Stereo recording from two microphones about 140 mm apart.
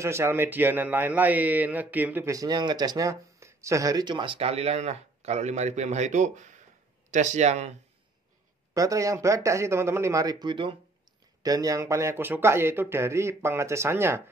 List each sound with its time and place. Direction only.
0.0 s a man's voice: 20° right (ahead or behind)
2.3 s speech: 30° right (ahead or behind); by 7.7 s 55° right (ahead or behind)
8.7 s speech: 25° right (ahead or behind)